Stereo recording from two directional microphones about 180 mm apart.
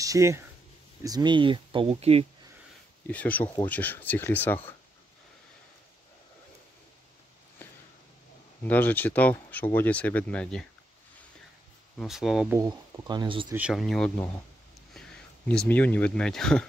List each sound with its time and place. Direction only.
0.0 s speech: 15° right (ahead or behind); by 2.2 s 35° right (ahead or behind)
3.1 s speech: 10° left (ahead or behind)
8.6 s speech: 10° left (ahead or behind)
12.0 s speech: centre (ahead or behind)
12.5 s speech: 15° right (ahead or behind)
13.5 s speech: 5° right (ahead or behind)